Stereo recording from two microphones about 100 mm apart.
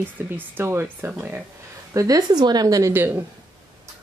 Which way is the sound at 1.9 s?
40° right (ahead or behind).